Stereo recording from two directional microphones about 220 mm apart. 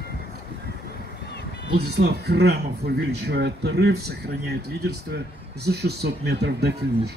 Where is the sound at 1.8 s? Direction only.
45° right (ahead or behind).